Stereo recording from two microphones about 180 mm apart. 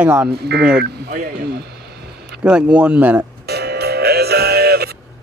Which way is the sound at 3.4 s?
65° right (ahead or behind).